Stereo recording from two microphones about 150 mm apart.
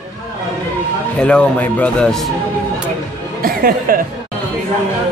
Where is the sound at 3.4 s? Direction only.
75° right (ahead or behind).